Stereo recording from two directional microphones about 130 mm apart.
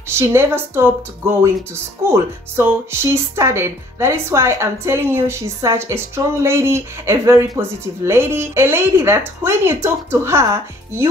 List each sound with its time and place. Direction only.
0.2 s speech: 20° right (ahead or behind)